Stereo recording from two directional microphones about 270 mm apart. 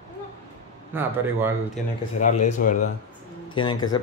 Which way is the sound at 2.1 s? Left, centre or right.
Left.